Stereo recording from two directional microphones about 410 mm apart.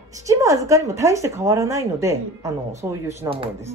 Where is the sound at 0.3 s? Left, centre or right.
Centre.